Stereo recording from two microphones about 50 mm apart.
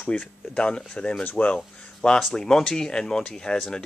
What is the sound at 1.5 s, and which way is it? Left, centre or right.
Speech, centre.